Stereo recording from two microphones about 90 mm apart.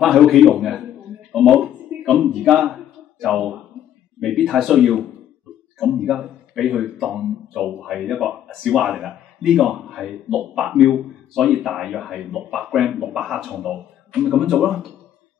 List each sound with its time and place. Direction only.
0.0 s speech: 5° right (ahead or behind)
1.3 s a sound: centre (ahead or behind)
4.2 s a man's voice: centre (ahead or behind)